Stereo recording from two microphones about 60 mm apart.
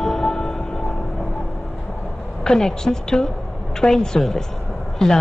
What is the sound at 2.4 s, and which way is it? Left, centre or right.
Speech, centre.